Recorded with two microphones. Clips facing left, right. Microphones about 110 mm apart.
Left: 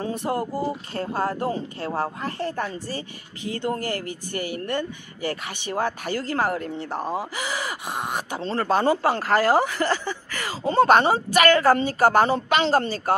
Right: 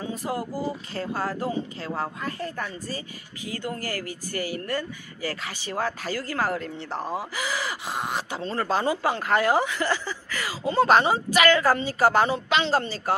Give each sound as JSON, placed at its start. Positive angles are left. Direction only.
{"t": 0.3, "sound": "speech", "side_deg": 40}
{"t": 0.9, "sound": "speech", "side_deg": 30}
{"t": 6.9, "sound": "speech", "side_deg": 10}
{"t": 7.3, "sound": "speech", "side_deg": 30}